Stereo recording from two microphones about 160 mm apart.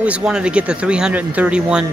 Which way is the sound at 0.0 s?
5° right (ahead or behind).